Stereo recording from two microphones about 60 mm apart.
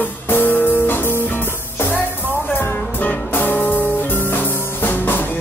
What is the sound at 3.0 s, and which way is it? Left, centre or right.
Music, left.